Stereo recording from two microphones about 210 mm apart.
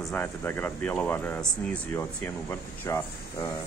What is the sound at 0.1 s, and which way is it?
Speech, 10° left (ahead or behind).